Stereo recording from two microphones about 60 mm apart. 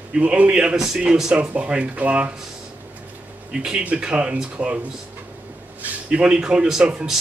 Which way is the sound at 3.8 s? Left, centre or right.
Centre.